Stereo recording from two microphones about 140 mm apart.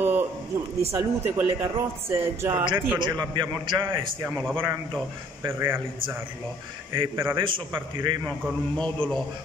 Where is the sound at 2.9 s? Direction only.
30° right (ahead or behind).